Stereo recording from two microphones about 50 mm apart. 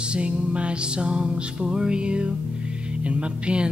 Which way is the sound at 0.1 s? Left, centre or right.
Right.